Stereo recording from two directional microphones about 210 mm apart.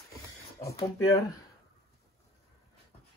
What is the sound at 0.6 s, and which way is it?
Speech, 15° left (ahead or behind).